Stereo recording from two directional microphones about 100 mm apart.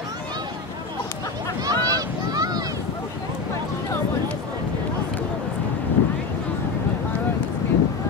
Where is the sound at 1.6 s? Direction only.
40° right (ahead or behind).